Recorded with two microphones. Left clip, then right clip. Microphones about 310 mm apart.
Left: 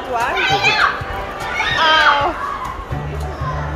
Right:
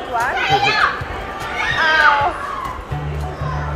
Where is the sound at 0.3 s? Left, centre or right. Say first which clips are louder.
Left 1 dB; left.